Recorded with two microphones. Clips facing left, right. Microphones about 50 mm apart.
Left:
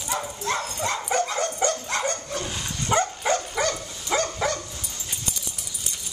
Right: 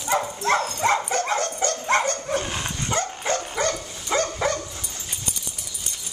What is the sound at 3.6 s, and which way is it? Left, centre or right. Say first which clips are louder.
Dog: right 1 dB; centre.